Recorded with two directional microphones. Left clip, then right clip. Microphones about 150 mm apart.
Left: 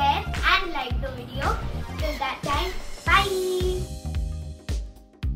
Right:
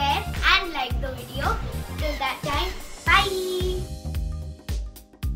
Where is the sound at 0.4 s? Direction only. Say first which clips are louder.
Right 5 dB; 15° right (ahead or behind).